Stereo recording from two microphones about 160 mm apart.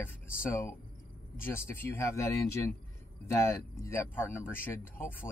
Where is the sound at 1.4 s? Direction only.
15° left (ahead or behind).